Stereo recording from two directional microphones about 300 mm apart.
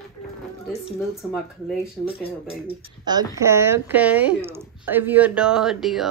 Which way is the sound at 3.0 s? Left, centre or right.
Centre.